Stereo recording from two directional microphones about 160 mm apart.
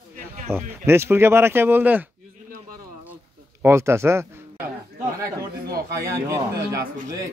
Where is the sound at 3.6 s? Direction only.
15° right (ahead or behind).